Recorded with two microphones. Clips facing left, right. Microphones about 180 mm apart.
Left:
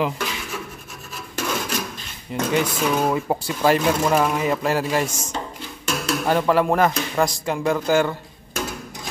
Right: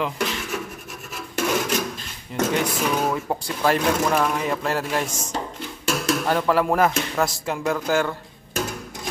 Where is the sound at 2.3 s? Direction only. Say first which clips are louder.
Left 1 dB; 5° left (ahead or behind).